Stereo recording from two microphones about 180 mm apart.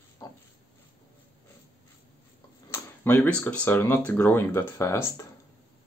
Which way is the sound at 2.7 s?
10° left (ahead or behind).